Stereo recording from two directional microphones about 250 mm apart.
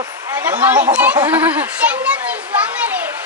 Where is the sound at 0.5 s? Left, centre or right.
Centre.